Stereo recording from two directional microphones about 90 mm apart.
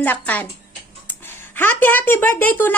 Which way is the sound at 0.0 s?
20° left (ahead or behind).